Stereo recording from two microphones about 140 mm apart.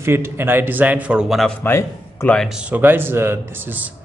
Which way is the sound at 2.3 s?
5° right (ahead or behind).